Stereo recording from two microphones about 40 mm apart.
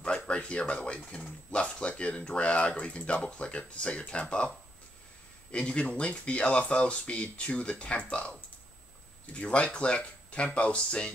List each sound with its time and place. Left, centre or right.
0.0 s speech: left
5.5 s speech: left